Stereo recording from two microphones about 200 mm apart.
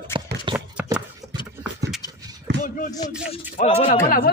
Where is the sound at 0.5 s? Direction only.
5° right (ahead or behind).